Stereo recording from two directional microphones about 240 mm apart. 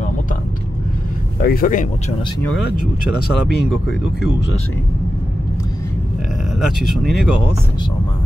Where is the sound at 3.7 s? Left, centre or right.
Centre.